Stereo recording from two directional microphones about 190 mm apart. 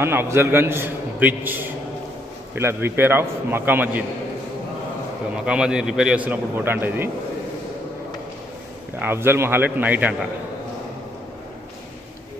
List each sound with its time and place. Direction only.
0.0 s a man's voice: 10° right (ahead or behind)
5.3 s a man's voice: 5° right (ahead or behind)
9.0 s a man's voice: 10° right (ahead or behind)